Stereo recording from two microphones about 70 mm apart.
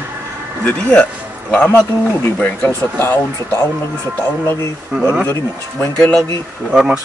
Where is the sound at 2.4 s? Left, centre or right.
Left.